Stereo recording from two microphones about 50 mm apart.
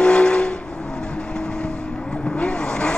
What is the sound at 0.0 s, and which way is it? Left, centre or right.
Vehicle, centre.